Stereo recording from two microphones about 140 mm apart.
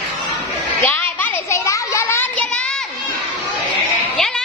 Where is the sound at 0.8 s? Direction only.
10° left (ahead or behind).